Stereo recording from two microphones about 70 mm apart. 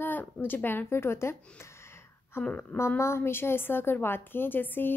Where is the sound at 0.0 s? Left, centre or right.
Left.